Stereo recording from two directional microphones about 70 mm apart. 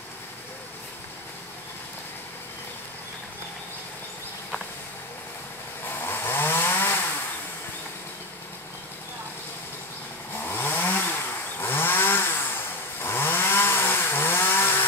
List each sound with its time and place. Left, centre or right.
5.9 s chainsaw: left
10.4 s chainsaw: left